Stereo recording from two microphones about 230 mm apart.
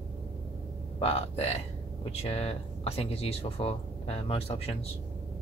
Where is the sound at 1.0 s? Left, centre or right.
Left.